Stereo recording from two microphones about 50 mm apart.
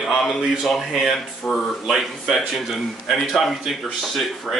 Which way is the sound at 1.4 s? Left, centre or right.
Centre.